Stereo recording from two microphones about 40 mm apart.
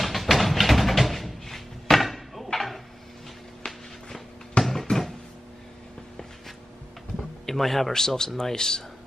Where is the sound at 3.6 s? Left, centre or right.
Left.